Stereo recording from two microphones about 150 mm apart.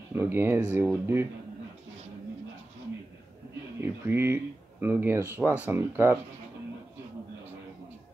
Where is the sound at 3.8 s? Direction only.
15° right (ahead or behind).